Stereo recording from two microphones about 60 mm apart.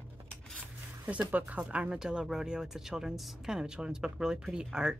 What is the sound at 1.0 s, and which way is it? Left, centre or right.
Speech, right.